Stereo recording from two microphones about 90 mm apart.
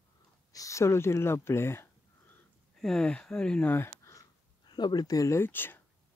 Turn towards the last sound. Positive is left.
turn(degrees=25)  # may be behind; listen again after turning